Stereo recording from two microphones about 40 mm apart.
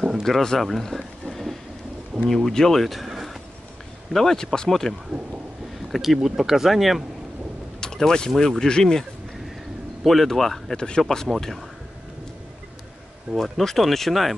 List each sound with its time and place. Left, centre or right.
0.2 s speech: centre
0.6 s a sound: centre
2.2 s speech: centre
5.9 s speech: centre
7.8 s a sound: centre
8.4 s speech: centre
10.0 s speech: centre
13.4 s speech: centre